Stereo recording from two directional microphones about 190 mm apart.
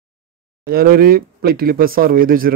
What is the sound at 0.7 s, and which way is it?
A man's voice, 50° right (ahead or behind).